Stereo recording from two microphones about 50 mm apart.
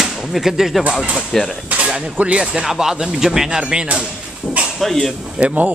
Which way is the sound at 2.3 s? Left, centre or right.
Centre.